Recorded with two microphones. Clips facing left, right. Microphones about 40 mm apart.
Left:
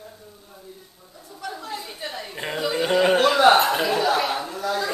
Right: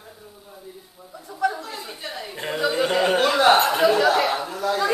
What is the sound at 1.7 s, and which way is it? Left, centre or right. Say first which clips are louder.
Chatter: left 1 dB; centre.